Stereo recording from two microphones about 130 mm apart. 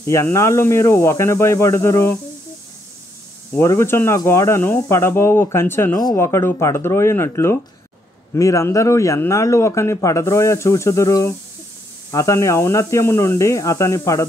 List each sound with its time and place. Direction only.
0.0 s a man's voice: 20° left (ahead or behind)
3.5 s a man's voice: 20° left (ahead or behind)